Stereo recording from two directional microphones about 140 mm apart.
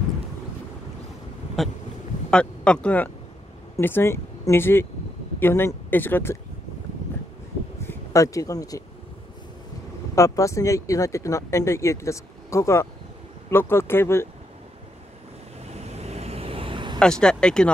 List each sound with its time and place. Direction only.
1.6 s speech: centre (ahead or behind)
7.8 s speech: 20° left (ahead or behind)
10.1 s speech: 20° left (ahead or behind)
15.6 s vehicle: 50° right (ahead or behind)
17.0 s speech: 5° left (ahead or behind)